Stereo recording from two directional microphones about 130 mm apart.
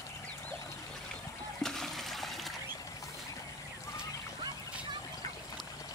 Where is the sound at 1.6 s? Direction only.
5° left (ahead or behind).